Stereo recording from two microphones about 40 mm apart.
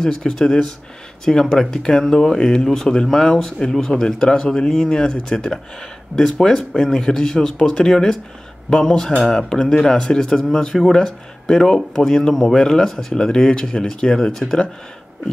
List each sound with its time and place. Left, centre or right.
0.0 s speech: centre